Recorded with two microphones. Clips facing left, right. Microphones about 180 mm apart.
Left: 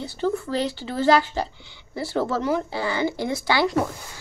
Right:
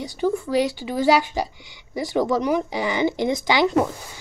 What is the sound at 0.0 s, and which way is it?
Speech, 10° right (ahead or behind).